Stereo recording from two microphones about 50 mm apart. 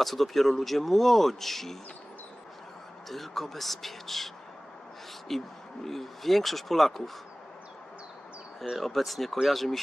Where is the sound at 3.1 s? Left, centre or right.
Centre.